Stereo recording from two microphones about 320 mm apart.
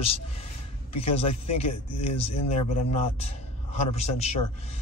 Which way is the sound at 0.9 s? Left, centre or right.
Centre.